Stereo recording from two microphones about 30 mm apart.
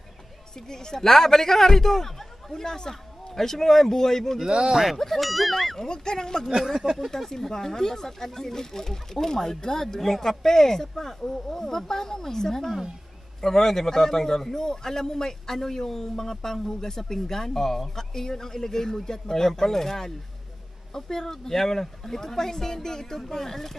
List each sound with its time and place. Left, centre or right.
0.6 s a woman's voice: centre
4.5 s speech: right
4.9 s speech: centre
5.9 s a woman's voice: left
7.2 s speech: centre
9.9 s speech: centre